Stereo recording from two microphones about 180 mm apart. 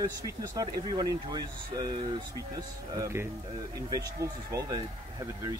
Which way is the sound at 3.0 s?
15° right (ahead or behind).